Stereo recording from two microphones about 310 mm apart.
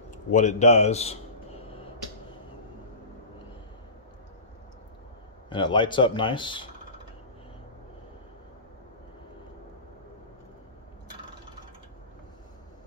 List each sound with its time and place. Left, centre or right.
0.3 s a man's voice: left
5.5 s speech: centre